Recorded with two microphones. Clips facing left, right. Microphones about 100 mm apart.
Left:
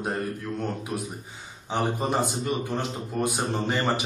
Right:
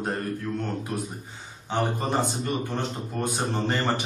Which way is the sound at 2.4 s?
5° left (ahead or behind).